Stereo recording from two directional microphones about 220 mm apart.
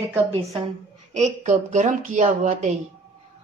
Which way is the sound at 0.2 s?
25° right (ahead or behind).